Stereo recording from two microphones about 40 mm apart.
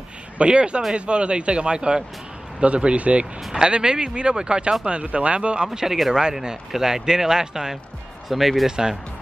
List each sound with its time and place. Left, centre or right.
0.4 s speech: right
3.5 s speech: right
5.0 s speech: right
5.7 s speech: centre
8.3 s speech: centre
8.6 s speech: centre